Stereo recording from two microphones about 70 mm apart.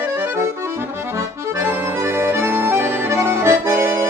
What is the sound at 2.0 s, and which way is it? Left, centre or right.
Accordion, right.